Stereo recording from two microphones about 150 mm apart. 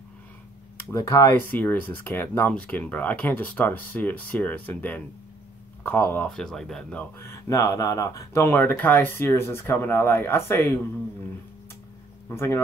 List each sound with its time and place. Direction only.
0.9 s speech: 20° left (ahead or behind)
12.3 s speech: 15° left (ahead or behind)